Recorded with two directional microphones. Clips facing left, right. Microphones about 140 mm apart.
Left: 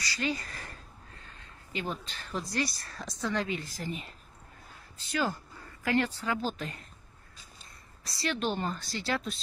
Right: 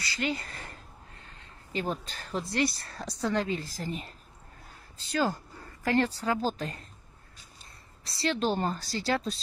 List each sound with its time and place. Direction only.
0.2 s a sound: 30° right (ahead or behind)
1.2 s speech: 30° right (ahead or behind)
5.9 s speech: 35° right (ahead or behind)
8.0 s speech: 30° right (ahead or behind)